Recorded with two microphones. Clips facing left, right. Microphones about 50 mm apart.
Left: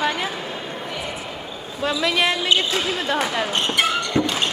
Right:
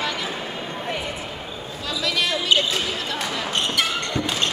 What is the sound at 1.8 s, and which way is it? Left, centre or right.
Speech, left.